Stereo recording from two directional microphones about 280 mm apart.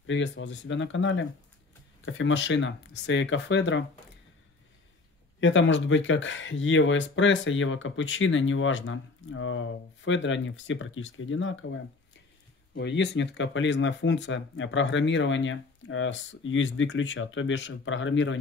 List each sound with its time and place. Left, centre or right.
0.0 s speech: left
5.4 s speech: left